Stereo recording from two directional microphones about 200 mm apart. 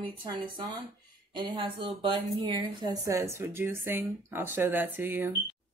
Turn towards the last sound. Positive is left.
turn(degrees=-10)  # may be behind; listen again after turning